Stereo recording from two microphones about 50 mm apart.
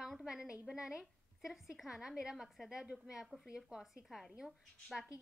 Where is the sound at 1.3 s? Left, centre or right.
Centre.